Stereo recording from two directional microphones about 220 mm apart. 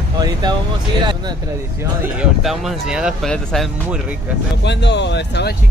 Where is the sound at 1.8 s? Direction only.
5° right (ahead or behind).